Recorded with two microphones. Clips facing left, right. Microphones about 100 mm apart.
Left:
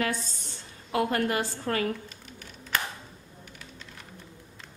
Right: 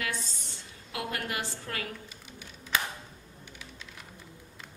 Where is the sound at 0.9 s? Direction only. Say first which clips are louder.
Left 9 dB; 40° left (ahead or behind).